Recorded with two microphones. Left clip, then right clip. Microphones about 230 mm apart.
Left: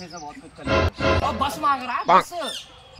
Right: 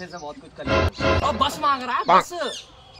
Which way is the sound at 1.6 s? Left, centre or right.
Centre.